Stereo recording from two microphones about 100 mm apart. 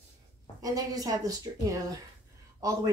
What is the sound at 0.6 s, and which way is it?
Speech, 35° right (ahead or behind).